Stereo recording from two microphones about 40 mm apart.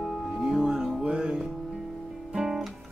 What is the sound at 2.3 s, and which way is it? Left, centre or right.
Guitar, centre.